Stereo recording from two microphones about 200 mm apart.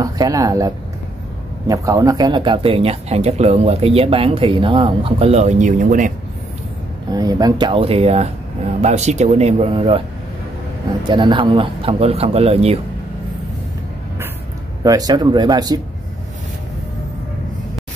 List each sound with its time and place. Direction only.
0.0 s speech: 15° right (ahead or behind); by 6.1 s 40° right (ahead or behind)
7.1 s speech: 20° right (ahead or behind)
11.1 s speech: 20° right (ahead or behind)
14.8 s speech: 20° right (ahead or behind)